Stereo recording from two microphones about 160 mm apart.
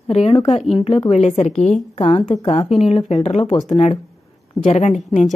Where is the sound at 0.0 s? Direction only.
40° left (ahead or behind).